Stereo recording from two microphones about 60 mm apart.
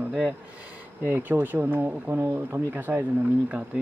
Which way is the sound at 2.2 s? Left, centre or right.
Right.